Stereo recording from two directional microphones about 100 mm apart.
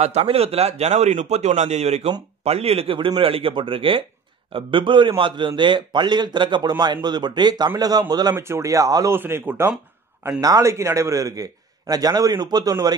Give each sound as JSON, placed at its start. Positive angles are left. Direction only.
{"t": 0.0, "sound": "a man's voice", "side_deg": -90}
{"t": 8.4, "sound": "speech", "side_deg": -30}
{"t": 9.2, "sound": "speech", "side_deg": -20}
{"t": 10.4, "sound": "speech", "side_deg": -35}